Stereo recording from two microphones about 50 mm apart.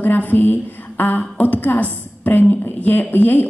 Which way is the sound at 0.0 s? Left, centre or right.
Left.